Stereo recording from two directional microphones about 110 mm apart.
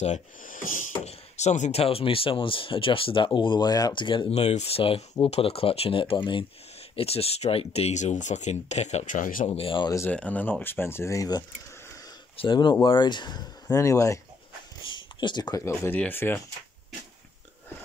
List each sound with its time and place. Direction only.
1.0 s speech: 90° left; by 3.3 s 55° left (ahead or behind)
3.3 s speech: 45° left (ahead or behind)
4.3 s speech: 70° left (ahead or behind); by 6.4 s 45° left (ahead or behind)
7.0 s speech: 65° left (ahead or behind); by 9.0 s 90° left
9.5 s speech: 55° left (ahead or behind)
10.0 s speech: 15° left (ahead or behind); by 11.4 s 35° left (ahead or behind)
12.4 s speech: 45° left (ahead or behind); by 14.2 s 30° left (ahead or behind)
14.9 s a sound: 45° left (ahead or behind)
15.6 s speech: 25° left (ahead or behind)